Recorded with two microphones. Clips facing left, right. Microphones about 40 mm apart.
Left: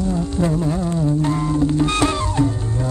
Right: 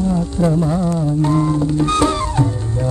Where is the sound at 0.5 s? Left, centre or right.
Centre.